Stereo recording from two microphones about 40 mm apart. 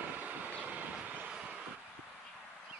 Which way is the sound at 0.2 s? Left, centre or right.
Right.